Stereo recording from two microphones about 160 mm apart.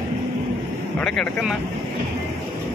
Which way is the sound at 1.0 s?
Centre (ahead or behind).